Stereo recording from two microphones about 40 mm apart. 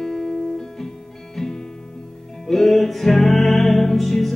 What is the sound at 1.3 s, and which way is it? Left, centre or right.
Music, centre.